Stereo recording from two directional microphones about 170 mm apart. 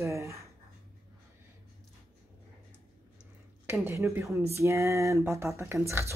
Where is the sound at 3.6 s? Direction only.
10° right (ahead or behind).